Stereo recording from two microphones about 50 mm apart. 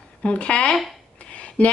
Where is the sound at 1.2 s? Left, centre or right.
Left.